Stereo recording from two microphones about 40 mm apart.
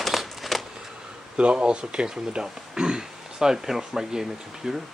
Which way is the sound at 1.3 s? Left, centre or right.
Right.